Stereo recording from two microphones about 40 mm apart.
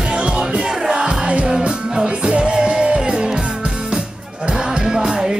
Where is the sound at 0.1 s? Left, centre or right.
Right.